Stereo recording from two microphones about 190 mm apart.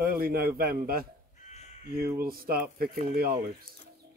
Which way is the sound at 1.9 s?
50° right (ahead or behind).